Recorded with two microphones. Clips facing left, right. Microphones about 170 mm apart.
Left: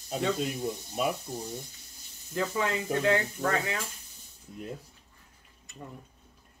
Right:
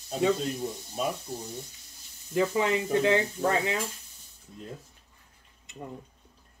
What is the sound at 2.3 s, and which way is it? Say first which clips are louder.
Speech: right 4 dB; 20° right (ahead or behind).